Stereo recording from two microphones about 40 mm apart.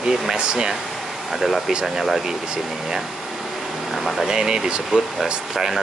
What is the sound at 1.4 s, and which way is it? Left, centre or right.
Speech, centre.